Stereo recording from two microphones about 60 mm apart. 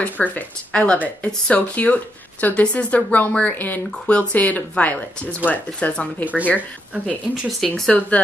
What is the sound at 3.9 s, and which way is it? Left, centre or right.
Speech, centre.